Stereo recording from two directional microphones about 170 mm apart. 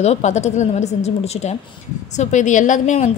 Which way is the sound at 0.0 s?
40° left (ahead or behind).